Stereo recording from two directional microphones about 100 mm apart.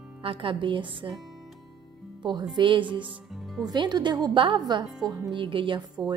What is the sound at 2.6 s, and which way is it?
Speech, 55° right (ahead or behind).